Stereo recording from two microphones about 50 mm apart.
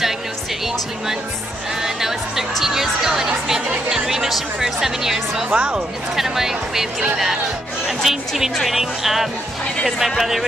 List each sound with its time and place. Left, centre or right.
1.8 s speech: centre
5.5 s speech: right
6.1 s speech: centre
8.0 s speech: centre